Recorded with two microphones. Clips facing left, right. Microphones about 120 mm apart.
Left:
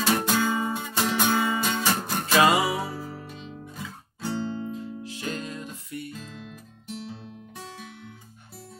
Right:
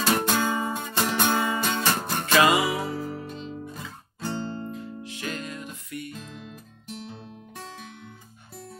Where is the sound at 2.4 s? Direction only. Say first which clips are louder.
Left 2 dB; 35° left (ahead or behind).